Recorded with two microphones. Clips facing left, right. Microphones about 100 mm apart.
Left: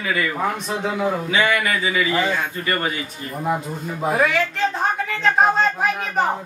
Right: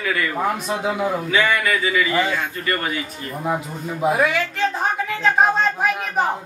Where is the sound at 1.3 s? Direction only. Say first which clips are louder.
Right 2 dB; 15° left (ahead or behind).